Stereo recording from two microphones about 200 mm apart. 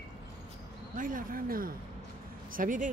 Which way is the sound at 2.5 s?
40° right (ahead or behind).